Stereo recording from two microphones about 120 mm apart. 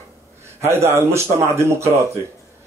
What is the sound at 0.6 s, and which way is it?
A man's voice, 20° right (ahead or behind).